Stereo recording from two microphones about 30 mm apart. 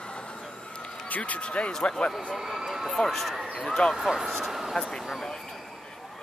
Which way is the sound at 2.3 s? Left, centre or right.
Centre.